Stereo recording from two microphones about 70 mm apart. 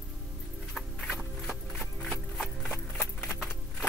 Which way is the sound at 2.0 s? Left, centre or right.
Centre.